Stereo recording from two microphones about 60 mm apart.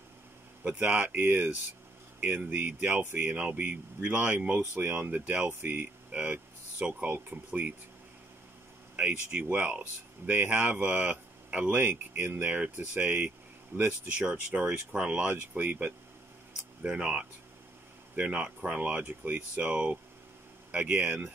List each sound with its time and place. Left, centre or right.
0.7 s speech: right
8.9 s speech: right